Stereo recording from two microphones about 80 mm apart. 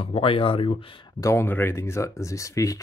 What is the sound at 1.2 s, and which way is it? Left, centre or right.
Speech, left.